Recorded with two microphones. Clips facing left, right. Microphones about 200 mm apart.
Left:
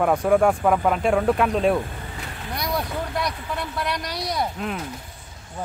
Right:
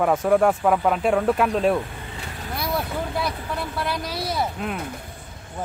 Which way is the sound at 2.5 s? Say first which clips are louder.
Even; 5° right (ahead or behind).